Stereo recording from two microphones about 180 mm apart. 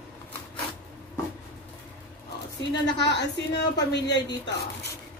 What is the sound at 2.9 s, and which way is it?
A woman's voice, 75° left (ahead or behind).